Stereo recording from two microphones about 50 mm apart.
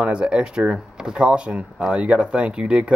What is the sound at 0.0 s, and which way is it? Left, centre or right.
Speech, right.